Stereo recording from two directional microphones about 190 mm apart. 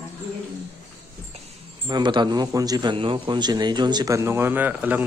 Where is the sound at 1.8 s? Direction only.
25° right (ahead or behind).